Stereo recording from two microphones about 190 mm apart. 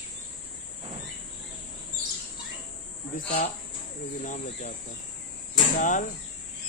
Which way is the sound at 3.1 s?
45° left (ahead or behind).